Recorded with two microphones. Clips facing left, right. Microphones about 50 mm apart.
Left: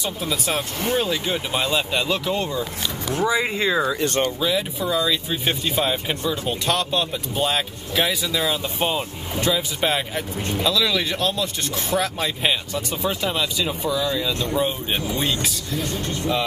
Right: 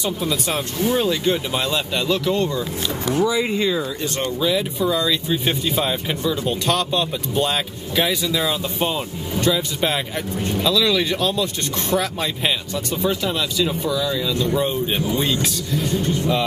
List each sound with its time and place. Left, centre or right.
0.0 s speech: centre
3.8 s speech: left
4.4 s speech: centre